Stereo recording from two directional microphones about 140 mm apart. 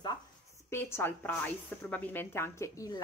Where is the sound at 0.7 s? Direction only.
15° left (ahead or behind).